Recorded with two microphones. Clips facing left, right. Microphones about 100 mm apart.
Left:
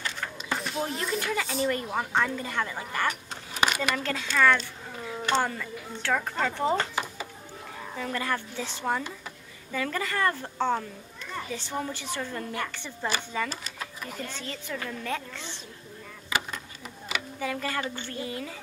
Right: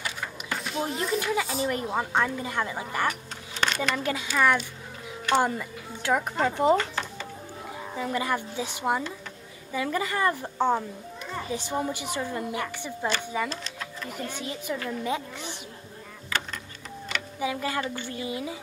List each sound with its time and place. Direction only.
0.0 s a sound: 15° right (ahead or behind)
0.5 s a child's voice: centre (ahead or behind)
1.7 s a woman's voice: 20° right (ahead or behind)
3.5 s a sound: 10° left (ahead or behind)
3.9 s a woman's voice: 15° right (ahead or behind)
7.9 s a woman's voice: 15° right (ahead or behind)
13.5 s speech: 5° left (ahead or behind)
14.1 s a woman's voice: 15° right (ahead or behind)
16.3 s a sound: 15° left (ahead or behind)
17.4 s a woman's voice: 15° right (ahead or behind)